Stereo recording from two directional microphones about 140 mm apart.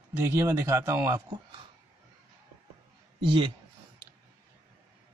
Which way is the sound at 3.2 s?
35° right (ahead or behind).